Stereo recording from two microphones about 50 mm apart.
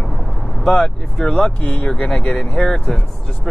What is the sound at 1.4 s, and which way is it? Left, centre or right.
Speech, left.